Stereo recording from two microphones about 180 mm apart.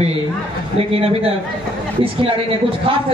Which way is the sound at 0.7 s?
35° right (ahead or behind).